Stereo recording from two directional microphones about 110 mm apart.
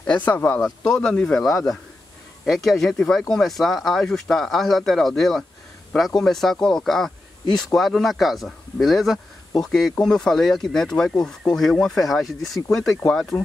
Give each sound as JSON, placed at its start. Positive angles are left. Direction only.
{"t": 0.0, "sound": "speech", "side_deg": 15}
{"t": 0.6, "sound": "speech", "side_deg": 5}